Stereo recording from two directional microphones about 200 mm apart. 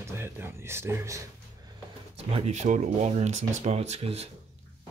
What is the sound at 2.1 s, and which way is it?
Speech, 30° right (ahead or behind).